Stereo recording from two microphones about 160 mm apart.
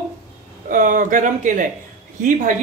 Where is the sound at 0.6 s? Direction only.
60° right (ahead or behind).